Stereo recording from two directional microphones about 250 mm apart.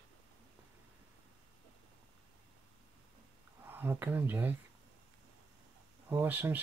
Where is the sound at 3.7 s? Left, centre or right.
Centre.